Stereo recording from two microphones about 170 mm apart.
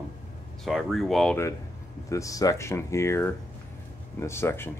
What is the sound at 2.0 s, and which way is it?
Speech, 20° left (ahead or behind).